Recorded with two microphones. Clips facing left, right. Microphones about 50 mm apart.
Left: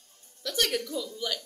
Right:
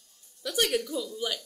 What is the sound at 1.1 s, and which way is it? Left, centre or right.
Speech, centre.